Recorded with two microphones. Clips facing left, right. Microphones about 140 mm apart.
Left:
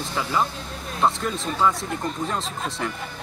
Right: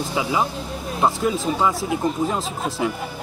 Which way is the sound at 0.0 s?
10° right (ahead or behind).